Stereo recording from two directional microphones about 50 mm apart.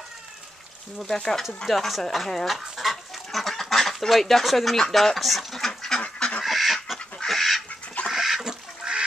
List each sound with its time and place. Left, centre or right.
1.0 s speech: centre
1.7 s speech: centre
2.2 s speech: centre
2.5 s goose: centre
4.9 s speech: centre
5.9 s goose: centre
6.4 s goose: centre
7.2 s duck: centre